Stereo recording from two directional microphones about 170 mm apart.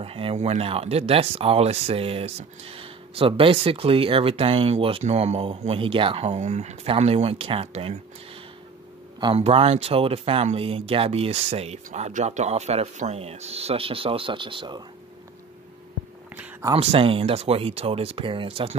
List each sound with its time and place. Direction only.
0.0 s speech: 35° right (ahead or behind)
9.2 s speech: 35° right (ahead or behind)
16.7 s speech: 35° right (ahead or behind)